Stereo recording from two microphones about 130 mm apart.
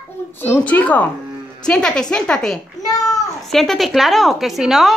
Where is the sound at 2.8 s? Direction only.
30° left (ahead or behind).